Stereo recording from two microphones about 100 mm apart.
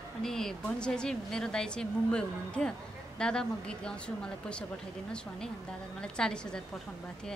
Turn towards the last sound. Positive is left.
turn(degrees=10)  # may be behind; listen again after turning